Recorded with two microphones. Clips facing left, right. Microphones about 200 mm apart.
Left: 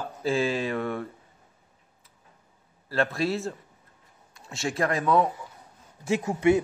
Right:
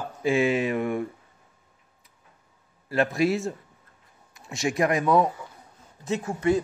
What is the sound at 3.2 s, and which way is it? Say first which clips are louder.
Speech: right 6 dB; 30° left (ahead or behind).